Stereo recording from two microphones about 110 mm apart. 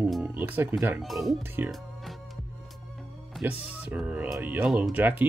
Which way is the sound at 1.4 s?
20° right (ahead or behind).